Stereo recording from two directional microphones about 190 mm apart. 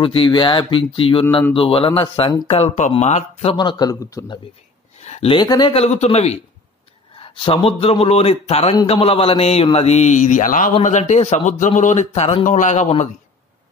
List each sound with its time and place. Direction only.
0.0 s speech: 25° left (ahead or behind)
3.5 s speech: 20° left (ahead or behind)
5.0 s a man's voice: 35° left (ahead or behind)